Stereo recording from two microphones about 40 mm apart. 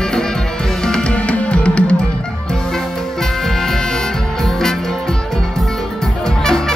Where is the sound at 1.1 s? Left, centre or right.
Left.